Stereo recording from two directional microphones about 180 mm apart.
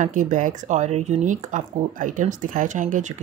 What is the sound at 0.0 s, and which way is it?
Speech, 45° right (ahead or behind).